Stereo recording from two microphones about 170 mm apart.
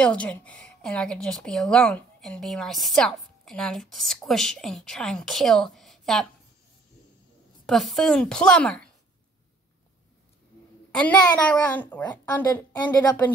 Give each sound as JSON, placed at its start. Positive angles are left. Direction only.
{"t": 0.0, "sound": "a woman's voice", "side_deg": 5}
{"t": 7.6, "sound": "a woman's voice", "side_deg": 0}
{"t": 10.9, "sound": "a child's voice", "side_deg": 10}